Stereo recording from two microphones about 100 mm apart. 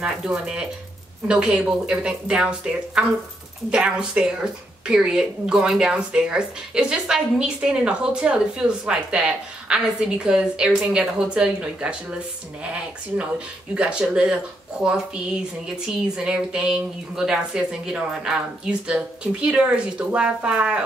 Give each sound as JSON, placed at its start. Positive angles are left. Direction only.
{"t": 0.0, "sound": "speech", "side_deg": -5}
{"t": 13.7, "sound": "speech", "side_deg": -10}